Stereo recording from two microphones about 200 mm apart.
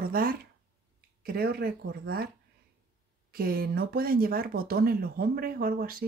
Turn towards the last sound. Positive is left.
turn(degrees=-50)  # may be behind; listen again after turning